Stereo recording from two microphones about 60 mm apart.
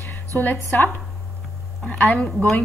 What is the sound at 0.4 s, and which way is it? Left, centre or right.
Speech, left.